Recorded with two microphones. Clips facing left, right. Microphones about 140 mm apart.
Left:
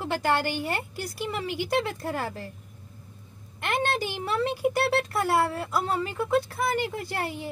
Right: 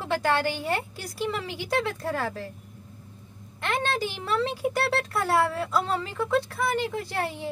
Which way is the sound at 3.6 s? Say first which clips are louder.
Even; 15° left (ahead or behind).